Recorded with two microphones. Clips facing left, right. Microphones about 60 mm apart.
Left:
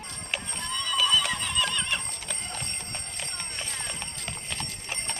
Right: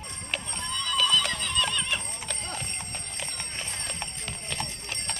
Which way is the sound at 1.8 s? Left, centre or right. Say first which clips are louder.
Even; centre.